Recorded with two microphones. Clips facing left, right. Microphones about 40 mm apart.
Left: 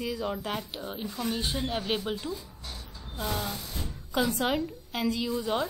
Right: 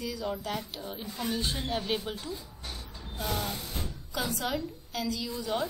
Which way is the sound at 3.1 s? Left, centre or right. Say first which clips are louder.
Left 1 dB; left.